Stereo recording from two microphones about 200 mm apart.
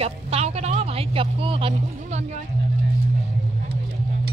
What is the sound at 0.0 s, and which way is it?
Speech, 30° right (ahead or behind).